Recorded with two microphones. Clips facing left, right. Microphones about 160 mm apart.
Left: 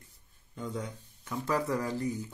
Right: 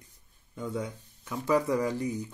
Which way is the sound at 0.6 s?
10° right (ahead or behind).